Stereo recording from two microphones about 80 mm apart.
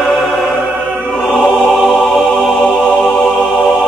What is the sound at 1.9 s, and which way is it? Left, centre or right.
Music, centre.